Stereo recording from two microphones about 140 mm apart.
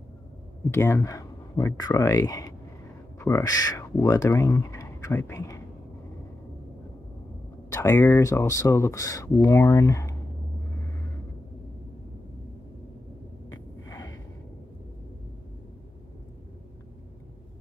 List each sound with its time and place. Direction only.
0.7 s speech: 20° left (ahead or behind)
7.7 s speech: 20° left (ahead or behind)
13.5 s a sound: 25° left (ahead or behind)